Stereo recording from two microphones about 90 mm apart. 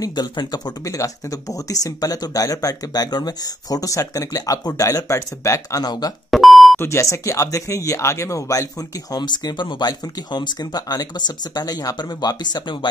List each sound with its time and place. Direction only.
0.0 s speech: 50° left (ahead or behind)
0.8 s speech: 35° left (ahead or behind)
6.3 s beep: centre (ahead or behind)
6.8 s speech: 30° left (ahead or behind); by 12.8 s 55° left (ahead or behind)